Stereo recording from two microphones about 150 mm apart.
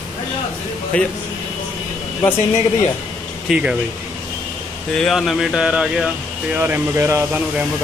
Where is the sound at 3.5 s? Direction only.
5° right (ahead or behind).